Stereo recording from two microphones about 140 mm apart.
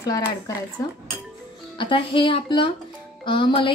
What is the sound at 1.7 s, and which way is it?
A woman's voice, 35° left (ahead or behind).